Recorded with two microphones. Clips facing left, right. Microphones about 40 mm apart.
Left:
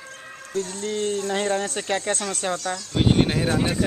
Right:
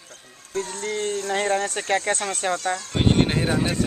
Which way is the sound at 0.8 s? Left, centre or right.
Centre.